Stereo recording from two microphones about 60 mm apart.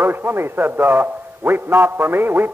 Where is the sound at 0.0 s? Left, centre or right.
Right.